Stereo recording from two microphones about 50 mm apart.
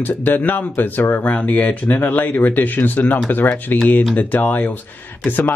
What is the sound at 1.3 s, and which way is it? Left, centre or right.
Speech, left.